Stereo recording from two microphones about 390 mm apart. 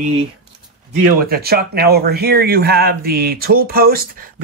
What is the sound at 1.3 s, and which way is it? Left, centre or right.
Speech, right.